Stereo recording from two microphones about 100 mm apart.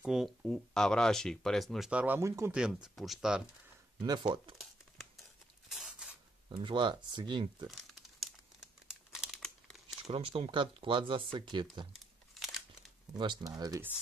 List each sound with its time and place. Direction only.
0.0 s speech: 5° right (ahead or behind)
1.9 s speech: 10° right (ahead or behind)
2.1 s speech: 25° right (ahead or behind)
2.5 s speech: 5° right (ahead or behind)
4.0 s speech: 50° right (ahead or behind)
4.6 s crumpling: centre (ahead or behind)
5.7 s a sound: 5° right (ahead or behind)
6.5 s speech: 55° right (ahead or behind)
7.6 s crumpling: centre (ahead or behind)
10.0 s speech: 70° right (ahead or behind); by 11.6 s 55° right (ahead or behind)
13.1 s speech: 45° right (ahead or behind)